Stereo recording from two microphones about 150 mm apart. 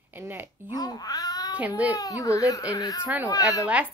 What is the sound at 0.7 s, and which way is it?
Speech, 25° left (ahead or behind).